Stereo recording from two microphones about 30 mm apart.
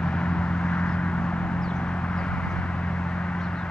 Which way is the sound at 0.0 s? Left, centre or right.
Left.